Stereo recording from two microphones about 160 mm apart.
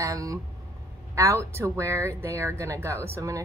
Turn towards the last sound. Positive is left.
turn(degrees=-20)  # may be behind; listen again after turning